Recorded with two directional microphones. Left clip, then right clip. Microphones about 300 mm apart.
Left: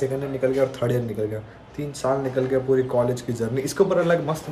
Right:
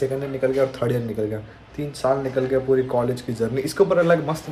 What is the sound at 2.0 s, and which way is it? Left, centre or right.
Speech, centre.